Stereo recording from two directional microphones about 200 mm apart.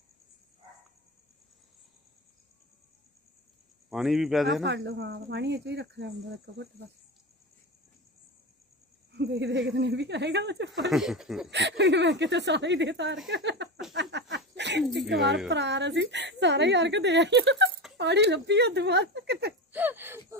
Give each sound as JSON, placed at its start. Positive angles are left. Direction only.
{"t": 3.9, "sound": "speech", "side_deg": 0}
{"t": 4.6, "sound": "a woman's voice", "side_deg": -60}
{"t": 9.1, "sound": "a woman's voice", "side_deg": -60}
{"t": 10.7, "sound": "speech", "side_deg": 0}
{"t": 11.5, "sound": "a woman's voice", "side_deg": -60}
{"t": 14.1, "sound": "a sound", "side_deg": -60}
{"t": 15.2, "sound": "a woman's voice", "side_deg": -60}
{"t": 19.7, "sound": "speech", "side_deg": -10}